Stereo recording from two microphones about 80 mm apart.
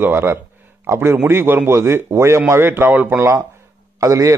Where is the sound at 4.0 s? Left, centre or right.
Right.